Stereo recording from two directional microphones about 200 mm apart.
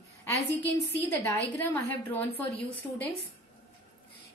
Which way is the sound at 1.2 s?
10° left (ahead or behind).